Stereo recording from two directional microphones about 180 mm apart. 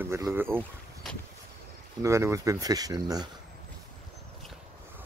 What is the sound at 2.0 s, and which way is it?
Speech, 15° right (ahead or behind).